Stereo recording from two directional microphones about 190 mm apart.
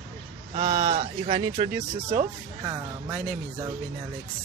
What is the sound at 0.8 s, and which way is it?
Speech, 35° right (ahead or behind).